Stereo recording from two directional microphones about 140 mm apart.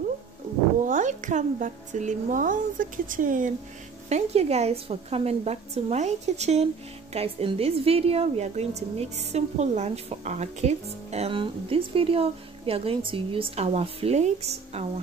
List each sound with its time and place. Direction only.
0.8 s speech: 65° right (ahead or behind)
4.1 s a woman's voice: 50° right (ahead or behind)